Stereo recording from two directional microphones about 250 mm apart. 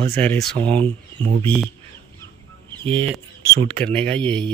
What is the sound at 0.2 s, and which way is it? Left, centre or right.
Speech, centre.